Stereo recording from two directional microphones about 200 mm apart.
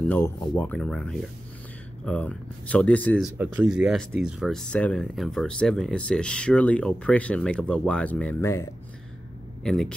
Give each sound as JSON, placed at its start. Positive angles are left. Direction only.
{"t": 0.1, "sound": "speech", "side_deg": 10}
{"t": 3.4, "sound": "speech", "side_deg": -5}
{"t": 9.6, "sound": "speech", "side_deg": 5}